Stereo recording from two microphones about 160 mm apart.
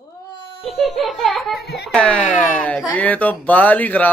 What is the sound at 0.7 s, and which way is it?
Speech, centre (ahead or behind).